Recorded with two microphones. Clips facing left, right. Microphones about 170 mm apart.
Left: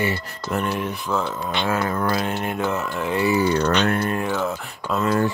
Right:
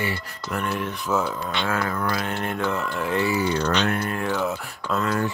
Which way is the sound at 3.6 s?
55° left (ahead or behind).